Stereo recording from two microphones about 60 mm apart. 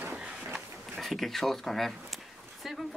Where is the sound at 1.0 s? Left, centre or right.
Centre.